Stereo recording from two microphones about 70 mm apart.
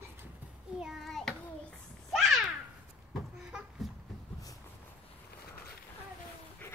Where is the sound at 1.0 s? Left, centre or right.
Centre.